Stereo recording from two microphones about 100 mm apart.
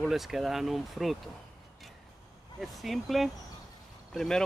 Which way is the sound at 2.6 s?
Centre (ahead or behind).